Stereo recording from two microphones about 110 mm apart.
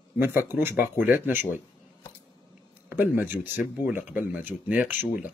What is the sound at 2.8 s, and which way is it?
Speech, 20° right (ahead or behind).